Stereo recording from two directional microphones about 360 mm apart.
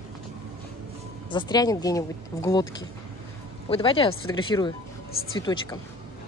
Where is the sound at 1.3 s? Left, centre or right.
Centre.